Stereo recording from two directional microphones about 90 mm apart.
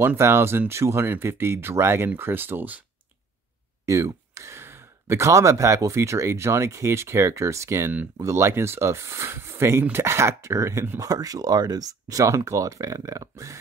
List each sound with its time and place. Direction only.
0.0 s speech: 25° right (ahead or behind)
3.8 s speech: 35° right (ahead or behind)